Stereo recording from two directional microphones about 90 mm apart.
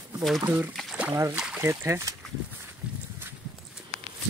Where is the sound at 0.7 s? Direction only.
10° right (ahead or behind).